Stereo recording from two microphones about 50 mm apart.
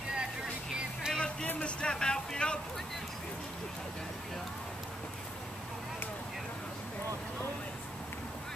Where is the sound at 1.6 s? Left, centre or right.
Centre.